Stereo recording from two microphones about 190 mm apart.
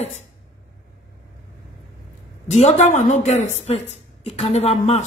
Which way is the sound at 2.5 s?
35° left (ahead or behind).